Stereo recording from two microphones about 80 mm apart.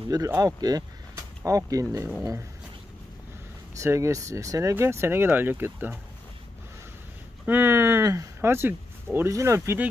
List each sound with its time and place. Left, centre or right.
0.4 s a sound: right
1.7 s speech: right
3.7 s speech: right
7.4 s speech: right
8.0 s speech: right
8.4 s speech: right